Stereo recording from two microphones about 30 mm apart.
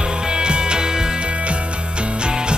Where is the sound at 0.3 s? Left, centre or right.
Right.